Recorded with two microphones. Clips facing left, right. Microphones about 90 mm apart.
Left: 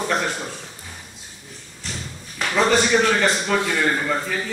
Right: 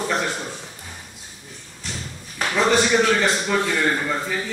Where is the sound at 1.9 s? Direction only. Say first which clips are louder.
Even; centre (ahead or behind).